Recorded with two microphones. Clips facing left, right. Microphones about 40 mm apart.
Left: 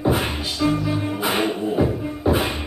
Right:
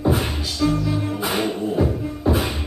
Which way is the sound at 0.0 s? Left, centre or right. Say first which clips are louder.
Even; centre.